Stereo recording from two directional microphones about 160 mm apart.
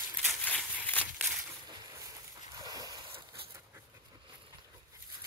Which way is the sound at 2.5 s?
25° right (ahead or behind).